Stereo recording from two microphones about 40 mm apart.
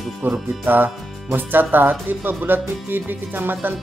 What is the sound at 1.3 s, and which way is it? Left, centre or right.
Speech, right.